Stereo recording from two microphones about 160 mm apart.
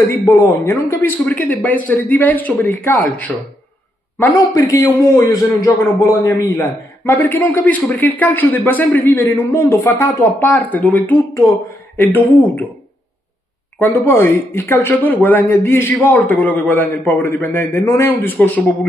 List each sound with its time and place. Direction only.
0.2 s a man's voice: 20° left (ahead or behind)
13.7 s a man's voice: 15° left (ahead or behind)